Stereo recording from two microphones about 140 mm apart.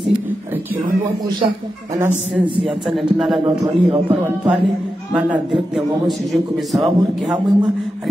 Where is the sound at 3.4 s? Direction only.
35° right (ahead or behind).